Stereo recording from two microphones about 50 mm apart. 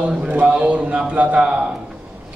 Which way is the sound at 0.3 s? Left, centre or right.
Right.